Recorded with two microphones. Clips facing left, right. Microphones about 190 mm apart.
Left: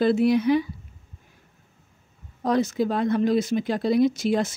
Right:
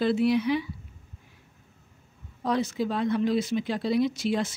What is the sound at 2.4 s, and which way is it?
Speech, 45° left (ahead or behind).